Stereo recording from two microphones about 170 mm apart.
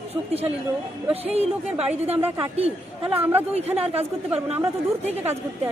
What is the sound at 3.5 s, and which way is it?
A man's voice, 35° right (ahead or behind).